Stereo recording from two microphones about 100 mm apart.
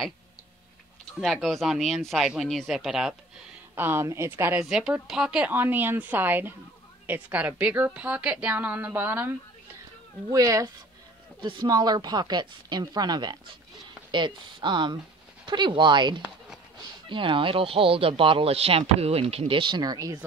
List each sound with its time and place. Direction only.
1.2 s speech: centre (ahead or behind)
3.7 s speech: 20° right (ahead or behind)
4.6 s a woman's voice: 5° right (ahead or behind)
5.5 s a woman's voice: 20° right (ahead or behind)
10.3 s speech: 35° right (ahead or behind)